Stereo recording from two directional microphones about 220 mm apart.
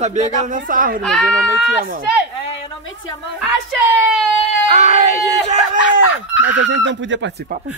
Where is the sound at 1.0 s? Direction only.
Centre (ahead or behind).